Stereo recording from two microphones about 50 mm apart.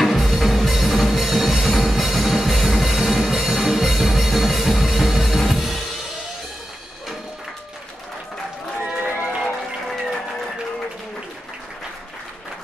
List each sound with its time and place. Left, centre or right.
0.0 s music: centre
8.8 s run: right